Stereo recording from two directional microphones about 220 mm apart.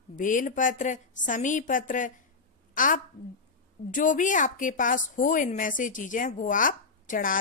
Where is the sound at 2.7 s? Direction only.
35° left (ahead or behind).